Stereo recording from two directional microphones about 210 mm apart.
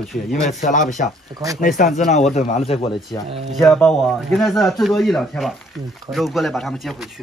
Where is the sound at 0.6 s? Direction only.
35° left (ahead or behind).